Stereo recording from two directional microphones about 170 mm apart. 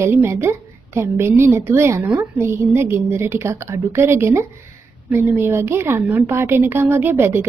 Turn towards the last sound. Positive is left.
turn(degrees=-15)  # may be behind; listen again after turning